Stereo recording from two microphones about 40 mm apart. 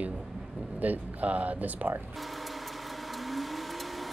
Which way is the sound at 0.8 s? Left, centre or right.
Right.